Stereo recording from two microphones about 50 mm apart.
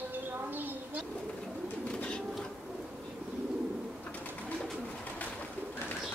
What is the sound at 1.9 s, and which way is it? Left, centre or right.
Bird, left.